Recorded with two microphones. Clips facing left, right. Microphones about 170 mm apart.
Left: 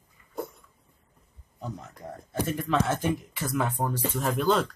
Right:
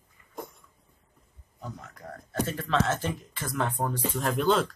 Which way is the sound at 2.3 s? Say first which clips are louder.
Left 1 dB; 15° left (ahead or behind).